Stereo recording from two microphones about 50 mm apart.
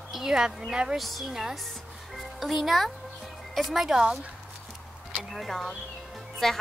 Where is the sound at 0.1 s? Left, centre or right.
Centre.